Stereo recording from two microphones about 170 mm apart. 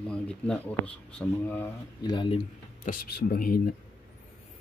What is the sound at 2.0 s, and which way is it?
Speech, 25° left (ahead or behind).